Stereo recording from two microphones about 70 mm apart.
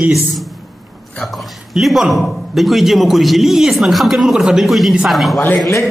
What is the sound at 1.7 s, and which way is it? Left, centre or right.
A man's voice, centre.